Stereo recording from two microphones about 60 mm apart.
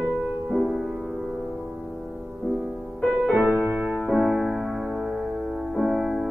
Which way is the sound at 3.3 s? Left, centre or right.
Right.